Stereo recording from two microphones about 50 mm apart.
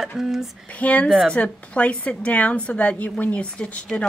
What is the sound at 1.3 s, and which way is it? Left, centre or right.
A woman's voice, left.